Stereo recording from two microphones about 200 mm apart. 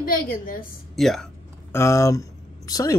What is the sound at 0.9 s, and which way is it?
Speech, centre (ahead or behind).